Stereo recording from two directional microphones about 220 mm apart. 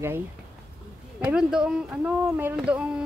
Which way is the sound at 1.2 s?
5° right (ahead or behind).